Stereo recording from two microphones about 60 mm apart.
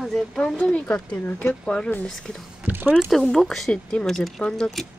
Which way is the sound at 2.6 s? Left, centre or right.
Right.